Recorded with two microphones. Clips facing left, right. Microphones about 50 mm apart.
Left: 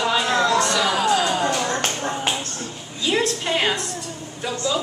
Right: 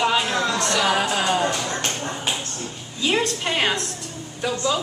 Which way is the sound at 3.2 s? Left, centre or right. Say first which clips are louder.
Left 3 dB; centre.